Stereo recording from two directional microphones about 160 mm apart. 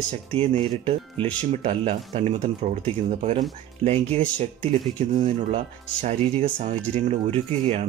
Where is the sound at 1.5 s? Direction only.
40° right (ahead or behind).